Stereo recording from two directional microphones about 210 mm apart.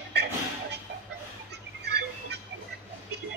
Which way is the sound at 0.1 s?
55° right (ahead or behind).